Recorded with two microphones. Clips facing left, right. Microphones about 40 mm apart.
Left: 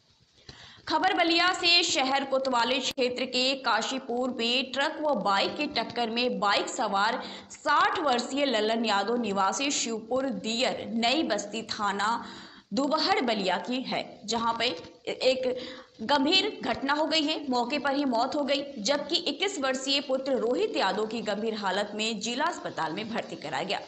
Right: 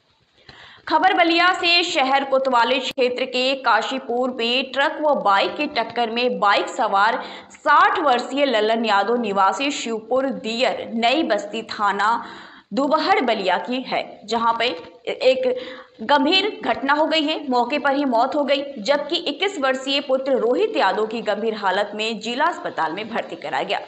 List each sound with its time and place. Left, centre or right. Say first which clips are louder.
0.9 s a woman's voice: right 8 dB; right
13.3 s a woman's voice: right 8 dB; right